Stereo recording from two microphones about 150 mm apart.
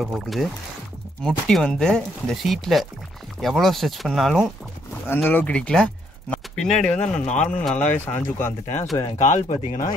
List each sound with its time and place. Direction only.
0.0 s speech: centre (ahead or behind)
5.0 s speech: 15° left (ahead or behind)
9.2 s speech: 55° left (ahead or behind)